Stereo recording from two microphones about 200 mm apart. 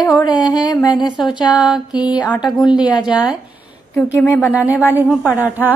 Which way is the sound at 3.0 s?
5° right (ahead or behind).